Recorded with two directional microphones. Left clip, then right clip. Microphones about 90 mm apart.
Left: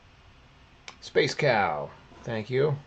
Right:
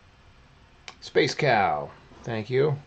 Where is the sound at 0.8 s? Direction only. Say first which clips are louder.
Right 2 dB; 20° right (ahead or behind).